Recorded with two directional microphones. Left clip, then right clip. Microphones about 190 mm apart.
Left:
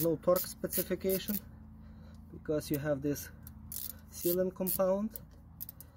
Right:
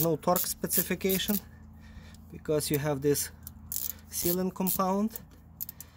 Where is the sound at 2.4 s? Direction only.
50° right (ahead or behind).